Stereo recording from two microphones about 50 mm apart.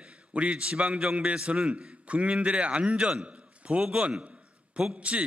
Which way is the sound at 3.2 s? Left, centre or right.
Right.